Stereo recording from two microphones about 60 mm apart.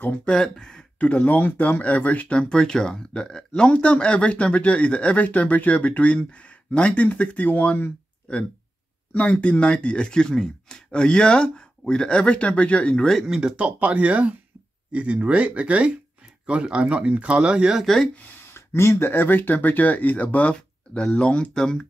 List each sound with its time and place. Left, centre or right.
0.3 s speech: centre
0.9 s speech: left
9.1 s speech: left
13.6 s speech: right
17.7 s speech: centre
18.4 s speech: left; by 21.8 s centre